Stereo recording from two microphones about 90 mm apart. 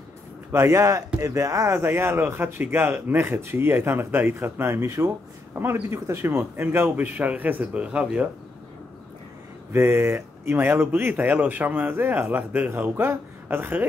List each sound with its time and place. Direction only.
0.5 s speech: 30° right (ahead or behind); by 8.3 s 15° right (ahead or behind)
9.7 s speech: 25° right (ahead or behind)